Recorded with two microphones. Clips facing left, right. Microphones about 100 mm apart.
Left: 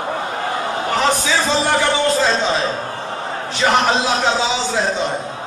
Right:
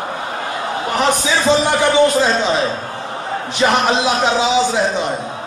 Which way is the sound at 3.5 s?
20° right (ahead or behind).